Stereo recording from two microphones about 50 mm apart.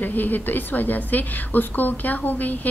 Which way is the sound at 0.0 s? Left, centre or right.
Left.